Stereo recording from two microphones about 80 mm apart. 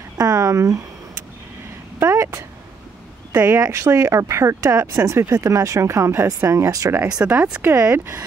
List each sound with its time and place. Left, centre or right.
0.2 s speech: right
2.0 s speech: right
3.4 s speech: right
7.1 s speech: centre